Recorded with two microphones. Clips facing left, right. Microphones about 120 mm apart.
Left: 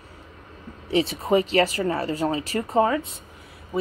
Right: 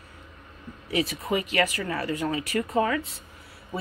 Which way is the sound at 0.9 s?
30° left (ahead or behind).